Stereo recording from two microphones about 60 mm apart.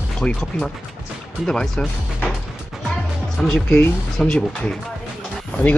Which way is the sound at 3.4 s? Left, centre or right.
Centre.